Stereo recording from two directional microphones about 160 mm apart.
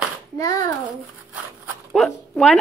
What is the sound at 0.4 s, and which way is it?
Speech, 20° left (ahead or behind).